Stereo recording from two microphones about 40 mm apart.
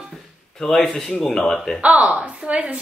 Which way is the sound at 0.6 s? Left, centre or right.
Centre.